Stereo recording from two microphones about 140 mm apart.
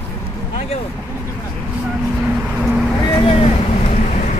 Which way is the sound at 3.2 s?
45° left (ahead or behind).